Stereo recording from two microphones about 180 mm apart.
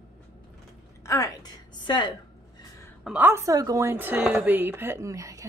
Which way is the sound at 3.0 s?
10° right (ahead or behind).